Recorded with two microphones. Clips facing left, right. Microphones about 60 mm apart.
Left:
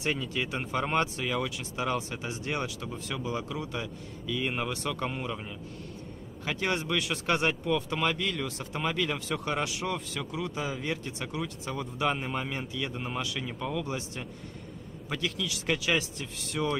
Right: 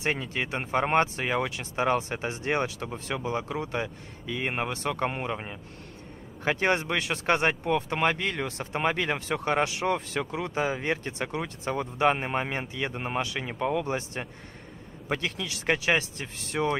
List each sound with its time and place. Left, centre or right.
0.0 s speech: right